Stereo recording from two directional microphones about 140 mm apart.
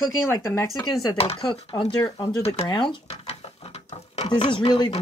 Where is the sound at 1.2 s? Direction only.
40° left (ahead or behind).